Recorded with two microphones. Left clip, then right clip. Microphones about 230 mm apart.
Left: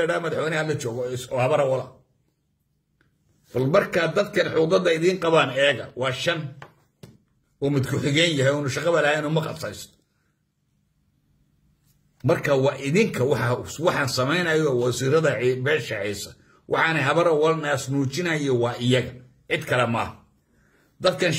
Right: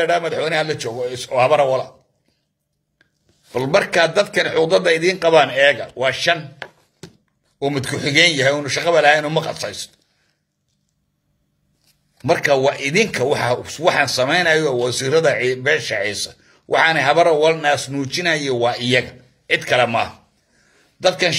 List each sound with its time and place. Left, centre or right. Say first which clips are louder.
0.0 s a man's voice: right 6 dB; centre
3.5 s a man's voice: right 5 dB; centre
7.7 s a man's voice: right 7 dB; centre
12.3 s a man's voice: right 5 dB; centre
19.8 s a man's voice: right 7 dB; centre